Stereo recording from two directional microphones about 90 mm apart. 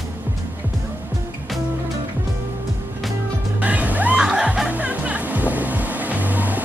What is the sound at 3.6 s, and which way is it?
Music, 15° right (ahead or behind).